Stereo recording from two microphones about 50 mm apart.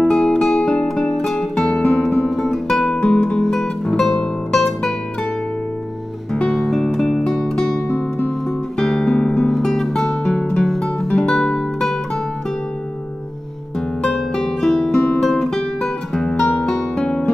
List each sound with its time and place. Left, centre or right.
0.0 s music: centre
2.2 s guitar: centre
4.1 s music: centre
6.5 s music: centre
9.1 s guitar: left
9.5 s guitar: centre
10.6 s music: centre
14.0 s music: centre
15.4 s guitar: centre